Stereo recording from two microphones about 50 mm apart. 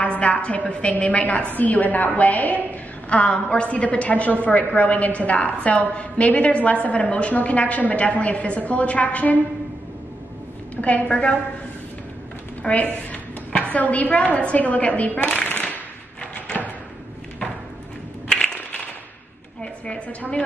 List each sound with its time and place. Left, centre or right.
0.2 s a woman's voice: left
10.8 s a woman's voice: left
12.6 s a woman's voice: left
19.6 s a sound: left